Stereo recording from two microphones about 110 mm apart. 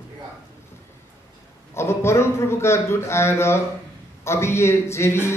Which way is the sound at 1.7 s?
25° left (ahead or behind).